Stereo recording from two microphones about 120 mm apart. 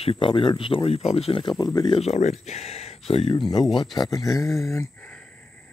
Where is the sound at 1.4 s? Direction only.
40° left (ahead or behind).